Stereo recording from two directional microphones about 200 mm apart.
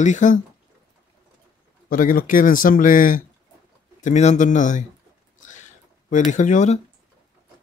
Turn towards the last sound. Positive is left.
turn(degrees=35)  # may be behind; listen again after turning